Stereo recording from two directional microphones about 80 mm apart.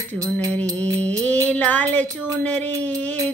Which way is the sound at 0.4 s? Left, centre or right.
Right.